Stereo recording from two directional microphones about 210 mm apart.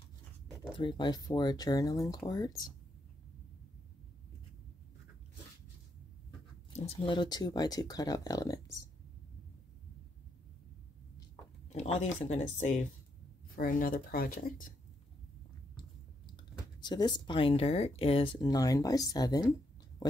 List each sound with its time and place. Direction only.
0.7 s speech: 20° left (ahead or behind)
6.9 s speech: 20° left (ahead or behind)
11.7 s speech: 30° left (ahead or behind)
16.8 s speech: 20° left (ahead or behind)